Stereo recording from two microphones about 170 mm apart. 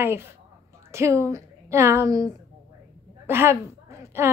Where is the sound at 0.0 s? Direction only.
15° right (ahead or behind).